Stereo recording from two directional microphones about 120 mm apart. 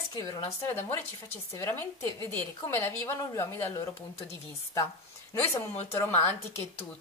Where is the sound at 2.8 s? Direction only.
20° left (ahead or behind).